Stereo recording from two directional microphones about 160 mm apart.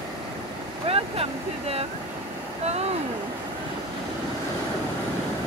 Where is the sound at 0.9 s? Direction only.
35° right (ahead or behind).